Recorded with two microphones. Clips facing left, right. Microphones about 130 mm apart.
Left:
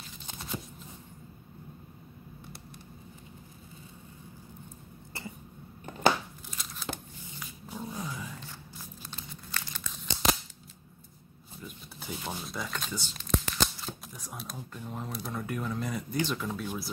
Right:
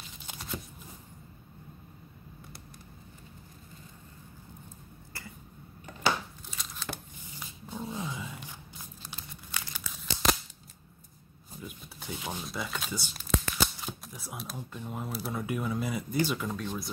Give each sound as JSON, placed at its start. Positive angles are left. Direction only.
{"t": 5.1, "sound": "cough", "side_deg": 20}
{"t": 6.5, "sound": "crumpling", "side_deg": 0}
{"t": 7.6, "sound": "dog", "side_deg": 0}
{"t": 9.1, "sound": "crumpling", "side_deg": -10}
{"t": 11.6, "sound": "a sound", "side_deg": -5}
{"t": 12.4, "sound": "shuffling cards", "side_deg": -5}
{"t": 14.6, "sound": "speech", "side_deg": -10}